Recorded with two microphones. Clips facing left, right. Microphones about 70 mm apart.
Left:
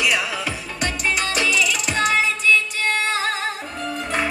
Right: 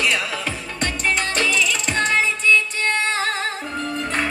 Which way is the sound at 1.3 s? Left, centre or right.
Centre.